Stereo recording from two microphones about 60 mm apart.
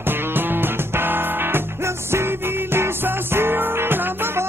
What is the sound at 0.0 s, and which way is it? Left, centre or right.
Music, right.